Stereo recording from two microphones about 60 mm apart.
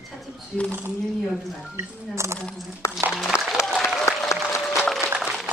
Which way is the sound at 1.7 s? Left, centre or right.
Right.